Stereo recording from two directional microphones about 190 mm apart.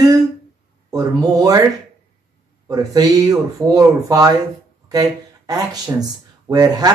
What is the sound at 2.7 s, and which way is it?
Speech, 20° right (ahead or behind).